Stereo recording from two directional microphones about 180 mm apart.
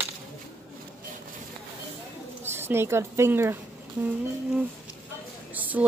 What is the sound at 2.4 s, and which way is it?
Speech, 15° right (ahead or behind).